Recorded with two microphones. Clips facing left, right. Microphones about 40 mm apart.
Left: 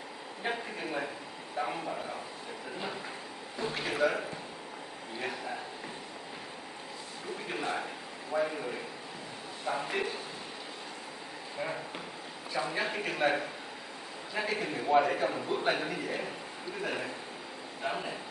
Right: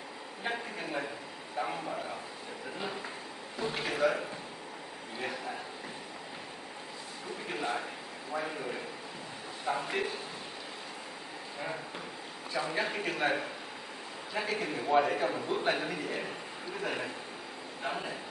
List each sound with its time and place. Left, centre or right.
0.4 s a man's voice: centre
3.5 s a man's voice: centre
7.4 s a man's voice: centre
12.5 s a man's voice: centre
17.8 s a man's voice: centre